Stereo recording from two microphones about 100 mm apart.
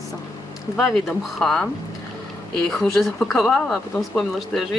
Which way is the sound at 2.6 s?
5° left (ahead or behind).